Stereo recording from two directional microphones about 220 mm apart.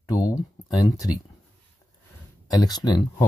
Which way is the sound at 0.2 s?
15° left (ahead or behind).